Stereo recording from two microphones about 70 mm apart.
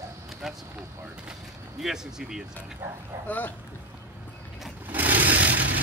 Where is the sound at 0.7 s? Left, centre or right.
Centre.